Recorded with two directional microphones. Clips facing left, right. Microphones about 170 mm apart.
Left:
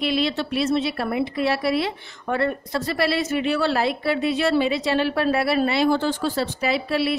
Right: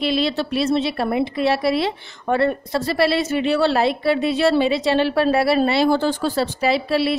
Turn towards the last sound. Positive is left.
turn(degrees=-30)  # may be behind; listen again after turning